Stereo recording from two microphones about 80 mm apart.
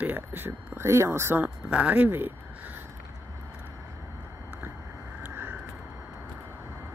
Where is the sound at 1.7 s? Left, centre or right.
Centre.